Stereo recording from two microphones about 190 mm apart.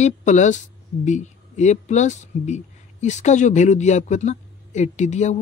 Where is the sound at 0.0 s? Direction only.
40° left (ahead or behind).